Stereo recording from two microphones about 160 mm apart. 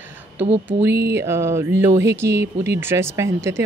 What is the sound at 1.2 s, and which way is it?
Speech, 15° right (ahead or behind).